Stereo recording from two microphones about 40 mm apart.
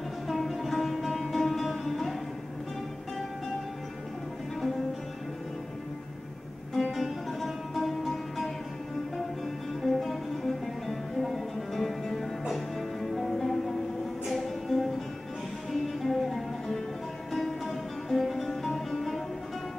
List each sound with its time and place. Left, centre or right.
0.3 s music: centre
6.7 s music: centre
9.8 s music: centre